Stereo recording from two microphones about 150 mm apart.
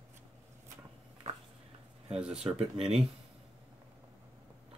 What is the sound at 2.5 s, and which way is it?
Speech, 40° right (ahead or behind).